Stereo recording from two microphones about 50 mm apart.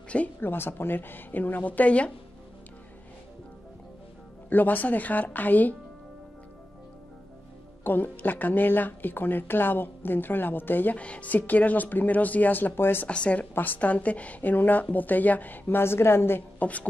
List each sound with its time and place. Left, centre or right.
0.4 s speech: left
4.5 s speech: left
7.8 s speech: left
11.0 s speech: left
13.1 s speech: left
13.6 s speech: left
15.8 s a woman's voice: left
16.5 s a woman's voice: left